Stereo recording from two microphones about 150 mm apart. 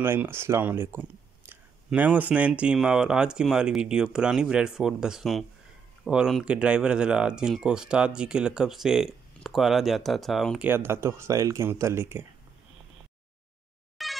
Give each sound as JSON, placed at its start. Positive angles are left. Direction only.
{"t": 0.0, "sound": "speech", "side_deg": -15}
{"t": 10.6, "sound": "speech", "side_deg": -15}
{"t": 14.0, "sound": "a sound", "side_deg": 0}